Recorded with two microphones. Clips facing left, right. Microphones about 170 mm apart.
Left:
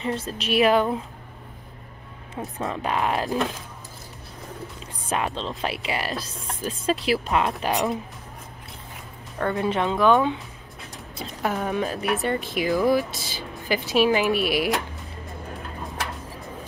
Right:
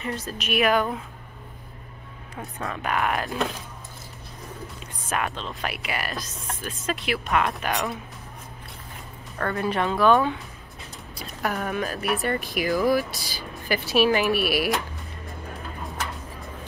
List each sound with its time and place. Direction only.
0.0 s speech: 25° left (ahead or behind)
2.6 s speech: 25° left (ahead or behind)
5.1 s speech: 30° left (ahead or behind)
7.7 s speech: 20° left (ahead or behind)
9.4 s speech: 20° left (ahead or behind)